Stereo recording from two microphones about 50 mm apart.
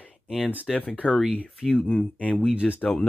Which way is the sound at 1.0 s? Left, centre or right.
Left.